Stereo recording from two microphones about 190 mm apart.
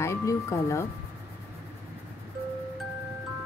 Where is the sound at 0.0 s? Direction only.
15° left (ahead or behind).